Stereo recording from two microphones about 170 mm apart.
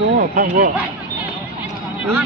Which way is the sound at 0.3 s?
55° right (ahead or behind).